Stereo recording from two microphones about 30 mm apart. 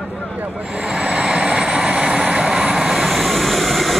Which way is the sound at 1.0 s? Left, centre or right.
Right.